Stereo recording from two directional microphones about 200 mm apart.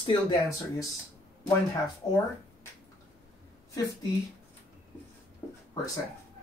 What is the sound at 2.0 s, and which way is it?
Speech, 25° left (ahead or behind).